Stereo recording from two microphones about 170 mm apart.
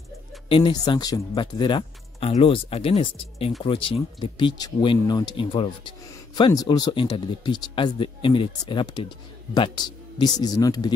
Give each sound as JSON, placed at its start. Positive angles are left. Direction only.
{"t": 0.5, "sound": "speech", "side_deg": 30}